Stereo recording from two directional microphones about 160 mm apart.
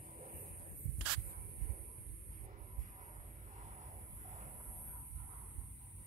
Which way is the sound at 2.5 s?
50° right (ahead or behind).